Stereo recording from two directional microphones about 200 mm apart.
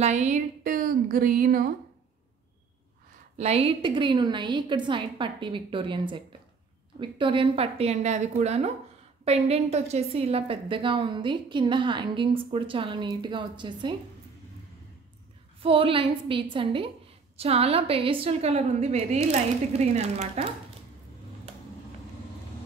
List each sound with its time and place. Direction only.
0.0 s speech: 35° right (ahead or behind)
3.3 s a woman's voice: 30° right (ahead or behind)
15.6 s a woman's voice: 25° right (ahead or behind)